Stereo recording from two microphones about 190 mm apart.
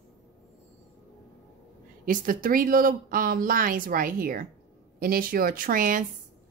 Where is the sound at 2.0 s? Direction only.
45° right (ahead or behind).